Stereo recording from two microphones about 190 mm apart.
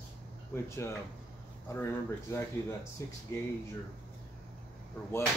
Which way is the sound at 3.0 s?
15° left (ahead or behind).